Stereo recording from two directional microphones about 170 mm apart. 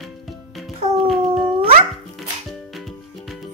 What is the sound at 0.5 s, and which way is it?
Music, centre (ahead or behind).